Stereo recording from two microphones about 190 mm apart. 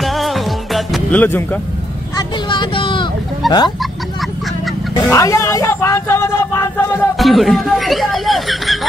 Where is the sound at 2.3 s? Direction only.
25° left (ahead or behind).